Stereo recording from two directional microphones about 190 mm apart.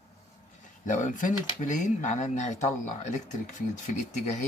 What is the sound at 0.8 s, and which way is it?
Speech, 40° left (ahead or behind).